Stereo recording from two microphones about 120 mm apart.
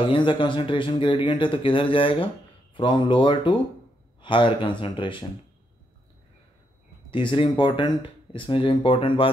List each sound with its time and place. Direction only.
0.0 s speech: 45° left (ahead or behind)
7.1 s speech: 45° left (ahead or behind)